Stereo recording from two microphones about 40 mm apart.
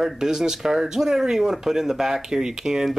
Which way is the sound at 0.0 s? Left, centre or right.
Centre.